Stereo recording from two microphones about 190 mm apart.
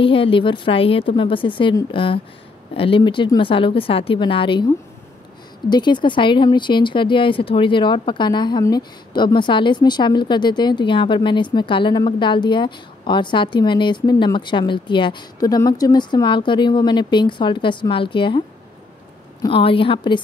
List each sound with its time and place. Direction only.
0.0 s speech: 30° left (ahead or behind)
19.4 s speech: 30° left (ahead or behind)